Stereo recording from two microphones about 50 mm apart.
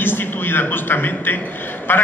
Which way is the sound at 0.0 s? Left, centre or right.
Left.